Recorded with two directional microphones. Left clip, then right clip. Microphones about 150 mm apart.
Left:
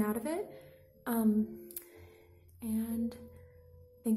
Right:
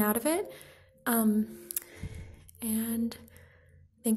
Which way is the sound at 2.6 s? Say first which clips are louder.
Right 3 dB; 10° right (ahead or behind).